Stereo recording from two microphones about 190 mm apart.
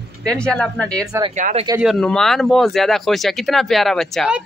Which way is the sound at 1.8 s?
Centre (ahead or behind).